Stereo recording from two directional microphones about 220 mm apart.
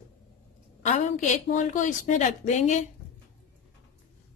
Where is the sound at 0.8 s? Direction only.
35° left (ahead or behind).